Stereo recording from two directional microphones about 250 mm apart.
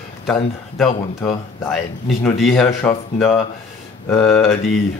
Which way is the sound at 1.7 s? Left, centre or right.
Centre.